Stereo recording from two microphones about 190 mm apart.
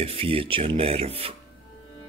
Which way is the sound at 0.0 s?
30° right (ahead or behind).